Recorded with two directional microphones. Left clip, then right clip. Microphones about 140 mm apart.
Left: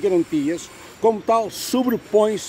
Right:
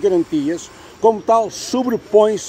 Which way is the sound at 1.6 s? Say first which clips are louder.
Right 2 dB; 20° left (ahead or behind).